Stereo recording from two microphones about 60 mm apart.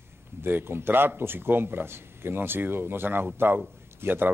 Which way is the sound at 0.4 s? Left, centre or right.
Right.